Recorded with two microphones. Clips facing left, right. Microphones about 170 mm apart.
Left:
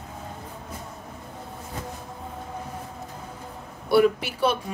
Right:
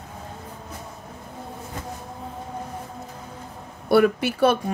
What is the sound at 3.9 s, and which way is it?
Speech, 50° right (ahead or behind).